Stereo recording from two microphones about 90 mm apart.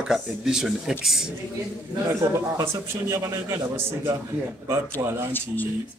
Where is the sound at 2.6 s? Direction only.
35° right (ahead or behind).